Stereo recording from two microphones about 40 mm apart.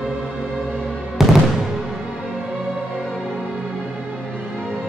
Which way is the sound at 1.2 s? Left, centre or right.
Centre.